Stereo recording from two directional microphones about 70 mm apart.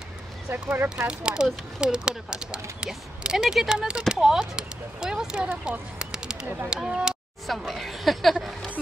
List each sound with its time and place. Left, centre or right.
0.5 s speech: right
1.0 s speech: centre
5.7 s a sound: centre
6.7 s speech: centre
7.4 s speech: centre